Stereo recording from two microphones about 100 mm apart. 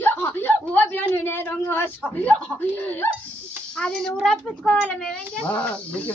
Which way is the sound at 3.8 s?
5° left (ahead or behind).